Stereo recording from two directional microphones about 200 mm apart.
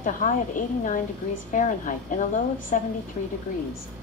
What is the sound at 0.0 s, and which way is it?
A woman's voice, 40° left (ahead or behind).